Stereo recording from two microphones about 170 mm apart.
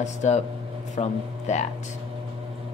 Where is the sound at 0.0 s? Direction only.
45° left (ahead or behind).